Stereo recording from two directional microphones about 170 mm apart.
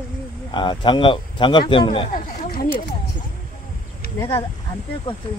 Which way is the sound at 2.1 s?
55° left (ahead or behind).